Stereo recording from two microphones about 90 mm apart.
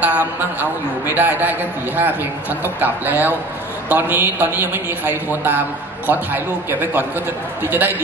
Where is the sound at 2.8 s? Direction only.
20° right (ahead or behind).